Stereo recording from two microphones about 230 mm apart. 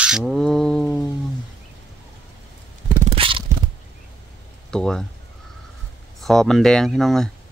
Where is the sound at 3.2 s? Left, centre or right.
Right.